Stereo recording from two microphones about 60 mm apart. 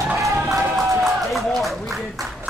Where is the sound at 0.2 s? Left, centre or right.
Right.